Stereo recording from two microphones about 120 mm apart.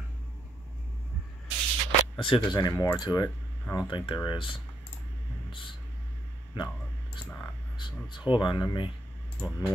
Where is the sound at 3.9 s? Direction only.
45° left (ahead or behind).